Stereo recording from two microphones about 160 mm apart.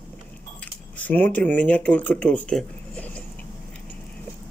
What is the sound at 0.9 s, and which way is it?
Speech, 10° left (ahead or behind).